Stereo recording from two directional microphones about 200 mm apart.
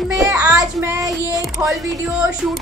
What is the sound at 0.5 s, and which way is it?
Child singing, 15° right (ahead or behind).